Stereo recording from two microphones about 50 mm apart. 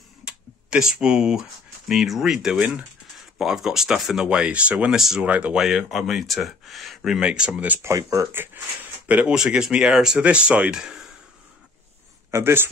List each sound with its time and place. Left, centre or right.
0.2 s computer keyboard: centre
1.9 s speech: centre; by 4.9 s right
4.9 s speech: centre
5.2 s speech: right
5.6 s speech: centre
7.1 s speech: centre
7.8 s speech: right
9.0 s speech: right
9.3 s speech: centre
10.7 s speech: centre
12.3 s a man's voice: right